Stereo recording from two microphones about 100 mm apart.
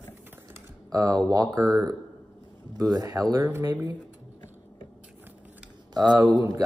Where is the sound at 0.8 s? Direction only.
40° right (ahead or behind).